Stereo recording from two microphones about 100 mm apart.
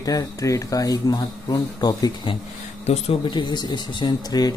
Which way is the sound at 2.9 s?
90° left.